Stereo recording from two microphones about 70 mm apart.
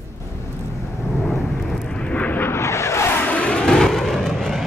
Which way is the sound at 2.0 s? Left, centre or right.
Centre.